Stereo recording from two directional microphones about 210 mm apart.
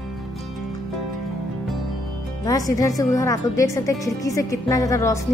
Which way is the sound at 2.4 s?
15° left (ahead or behind).